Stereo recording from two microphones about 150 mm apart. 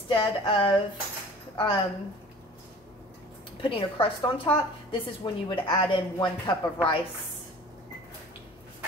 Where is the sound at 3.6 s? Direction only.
35° left (ahead or behind).